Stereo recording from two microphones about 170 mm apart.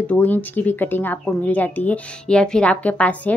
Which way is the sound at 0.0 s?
10° left (ahead or behind).